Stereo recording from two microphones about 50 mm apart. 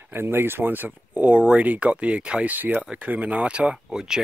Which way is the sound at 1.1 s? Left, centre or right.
Right.